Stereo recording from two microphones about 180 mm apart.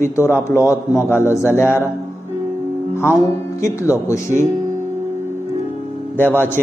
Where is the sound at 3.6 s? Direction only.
15° left (ahead or behind).